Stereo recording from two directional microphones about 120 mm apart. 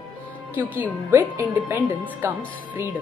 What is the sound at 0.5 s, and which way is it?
A woman's voice, 15° right (ahead or behind).